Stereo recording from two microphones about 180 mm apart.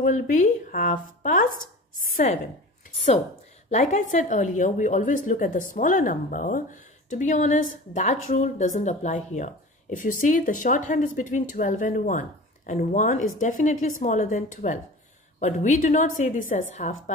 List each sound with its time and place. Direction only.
0.0 s speech: 45° left (ahead or behind)
3.7 s speech: 40° left (ahead or behind)